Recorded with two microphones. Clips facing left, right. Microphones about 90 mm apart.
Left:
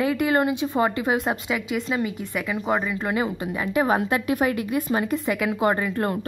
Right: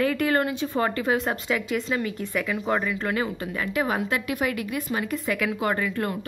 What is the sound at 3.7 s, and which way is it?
Speech, 30° left (ahead or behind).